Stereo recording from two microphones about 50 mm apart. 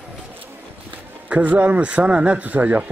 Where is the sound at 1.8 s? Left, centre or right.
Right.